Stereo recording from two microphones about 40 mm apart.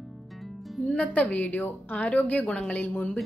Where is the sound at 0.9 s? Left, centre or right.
Left.